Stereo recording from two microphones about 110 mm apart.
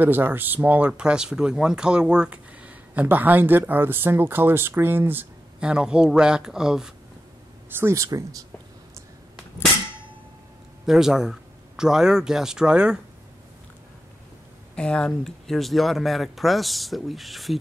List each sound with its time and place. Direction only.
0.0 s speech: 20° right (ahead or behind)
5.6 s speech: 10° right (ahead or behind)
7.7 s speech: 25° right (ahead or behind)
10.9 s speech: 5° right (ahead or behind)
14.8 s speech: 10° left (ahead or behind)